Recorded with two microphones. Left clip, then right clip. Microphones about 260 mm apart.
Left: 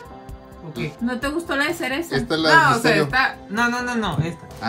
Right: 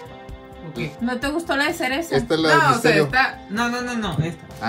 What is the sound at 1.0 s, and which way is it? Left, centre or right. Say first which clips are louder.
Speech: right 1 dB; right.